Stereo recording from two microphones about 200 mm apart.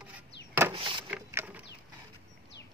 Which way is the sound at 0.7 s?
25° right (ahead or behind).